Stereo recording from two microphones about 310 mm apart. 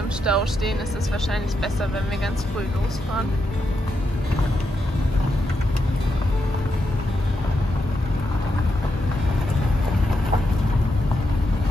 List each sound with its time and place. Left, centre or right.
0.2 s speech: centre